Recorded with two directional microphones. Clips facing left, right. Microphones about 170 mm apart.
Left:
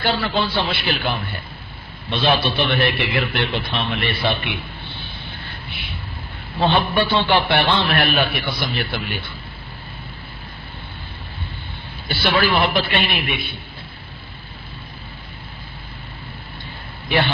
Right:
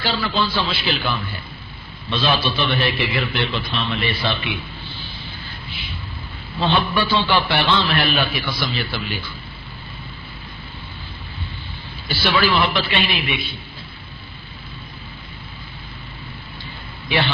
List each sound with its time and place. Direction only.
0.0 s a man's voice: 65° left (ahead or behind)
2.1 s a man's voice: 60° left (ahead or behind)
4.4 s a sound: 60° left (ahead or behind)
6.9 s a man's voice: 55° left (ahead or behind)
12.1 s a man's voice: 50° left (ahead or behind)